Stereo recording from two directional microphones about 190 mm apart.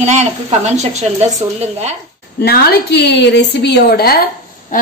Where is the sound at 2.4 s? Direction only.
55° left (ahead or behind).